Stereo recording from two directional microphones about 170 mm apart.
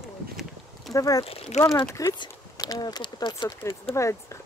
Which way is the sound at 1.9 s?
20° left (ahead or behind).